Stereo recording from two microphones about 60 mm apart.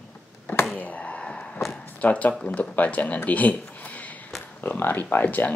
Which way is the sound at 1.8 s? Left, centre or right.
Left.